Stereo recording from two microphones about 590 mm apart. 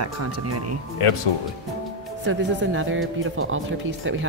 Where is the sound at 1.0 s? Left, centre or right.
Left.